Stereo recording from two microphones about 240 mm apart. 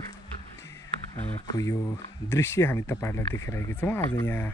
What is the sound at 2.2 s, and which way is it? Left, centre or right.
Speech, centre.